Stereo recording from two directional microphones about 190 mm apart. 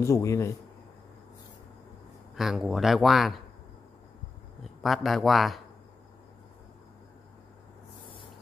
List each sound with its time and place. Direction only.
0.0 s speech: 15° left (ahead or behind)
2.3 s speech: centre (ahead or behind)
4.8 s speech: centre (ahead or behind)